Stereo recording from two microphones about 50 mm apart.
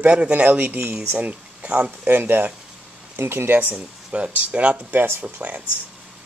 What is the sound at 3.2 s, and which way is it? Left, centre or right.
Speech, right.